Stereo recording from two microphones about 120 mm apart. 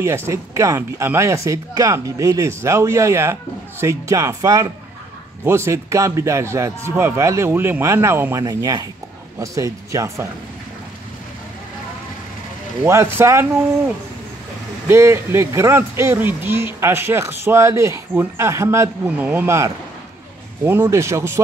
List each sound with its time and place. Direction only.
0.0 s speech: 20° right (ahead or behind)
12.8 s speech: 20° right (ahead or behind)
14.9 s speech: 20° right (ahead or behind)
19.0 s speech: 15° right (ahead or behind)